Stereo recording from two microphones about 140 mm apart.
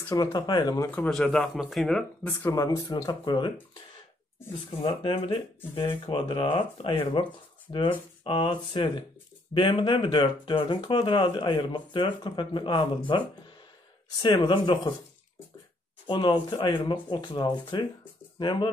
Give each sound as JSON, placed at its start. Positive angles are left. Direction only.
{"t": 0.1, "sound": "speech", "side_deg": 30}
{"t": 1.1, "sound": "speech", "side_deg": 5}
{"t": 2.5, "sound": "speech", "side_deg": 25}
{"t": 4.8, "sound": "speech", "side_deg": 40}
{"t": 16.1, "sound": "speech", "side_deg": 35}